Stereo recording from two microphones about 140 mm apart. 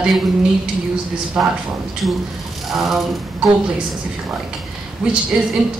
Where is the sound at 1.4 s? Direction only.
5° right (ahead or behind).